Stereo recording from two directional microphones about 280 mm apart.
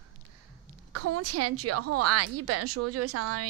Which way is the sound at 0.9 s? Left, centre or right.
Right.